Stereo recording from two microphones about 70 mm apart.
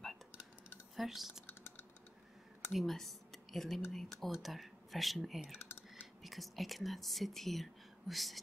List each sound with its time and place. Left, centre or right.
0.9 s speech: centre
1.5 s typing: left
2.7 s speech: centre